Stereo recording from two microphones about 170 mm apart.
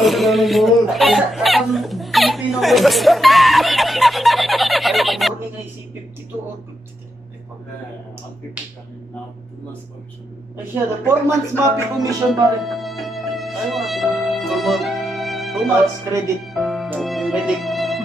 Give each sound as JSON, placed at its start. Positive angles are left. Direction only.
{"t": 0.0, "sound": "speech", "side_deg": 0}
{"t": 10.7, "sound": "speech", "side_deg": -15}
{"t": 12.3, "sound": "music", "side_deg": 0}